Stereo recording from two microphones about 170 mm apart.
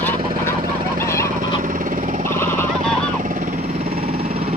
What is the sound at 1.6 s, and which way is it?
Jackhammer, 50° right (ahead or behind).